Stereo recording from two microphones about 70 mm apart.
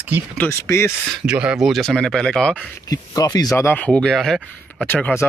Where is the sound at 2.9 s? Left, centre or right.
Left.